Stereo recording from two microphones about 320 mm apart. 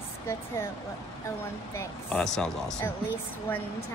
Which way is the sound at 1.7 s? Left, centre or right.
Centre.